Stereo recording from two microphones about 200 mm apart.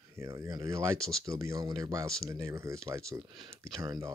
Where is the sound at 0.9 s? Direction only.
5° left (ahead or behind).